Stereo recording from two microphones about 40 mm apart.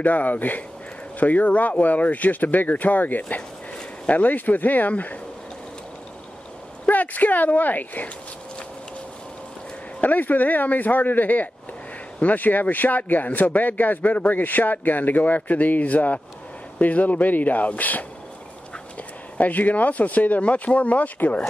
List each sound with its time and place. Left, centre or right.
0.0 s speech: left
6.9 s speech: left
10.0 s speech: left
19.3 s speech: left